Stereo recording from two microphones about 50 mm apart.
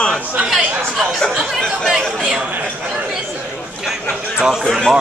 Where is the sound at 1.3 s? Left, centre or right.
Centre.